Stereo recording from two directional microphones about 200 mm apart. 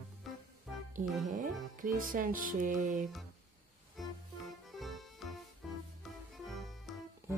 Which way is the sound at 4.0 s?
Centre (ahead or behind).